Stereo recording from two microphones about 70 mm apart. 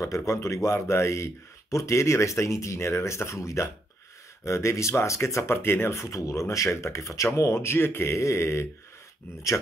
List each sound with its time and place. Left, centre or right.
0.0 s a man's voice: left
5.6 s speech: left